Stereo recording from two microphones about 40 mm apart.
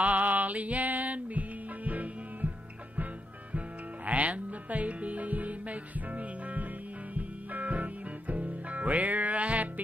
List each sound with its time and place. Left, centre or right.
0.0 s music: right
3.5 s music: right